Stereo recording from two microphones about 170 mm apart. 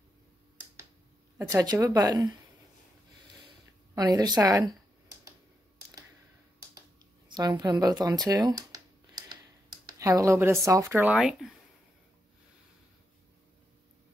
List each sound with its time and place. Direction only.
1.5 s a woman's voice: 20° right (ahead or behind)
3.9 s a woman's voice: 20° right (ahead or behind)
7.2 s a woman's voice: 25° right (ahead or behind)
7.8 s a sound: 20° right (ahead or behind)
9.8 s speech: 20° right (ahead or behind); by 11.5 s 5° right (ahead or behind)